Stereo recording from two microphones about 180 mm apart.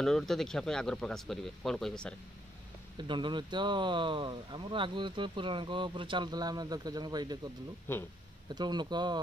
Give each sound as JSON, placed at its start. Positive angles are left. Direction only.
{"t": 0.0, "sound": "speech", "side_deg": 0}
{"t": 3.0, "sound": "speech", "side_deg": -25}
{"t": 7.9, "sound": "speech", "side_deg": 10}
{"t": 8.5, "sound": "speech", "side_deg": -25}